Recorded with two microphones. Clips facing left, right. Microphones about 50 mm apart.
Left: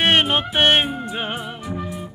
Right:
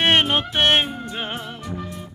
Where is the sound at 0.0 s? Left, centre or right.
Centre.